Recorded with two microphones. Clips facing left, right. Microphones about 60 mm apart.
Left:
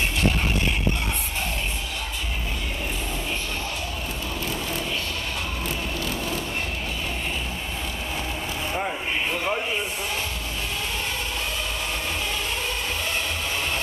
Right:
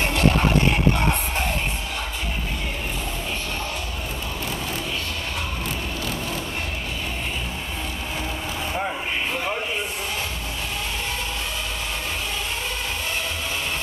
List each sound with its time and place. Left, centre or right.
0.0 s music: right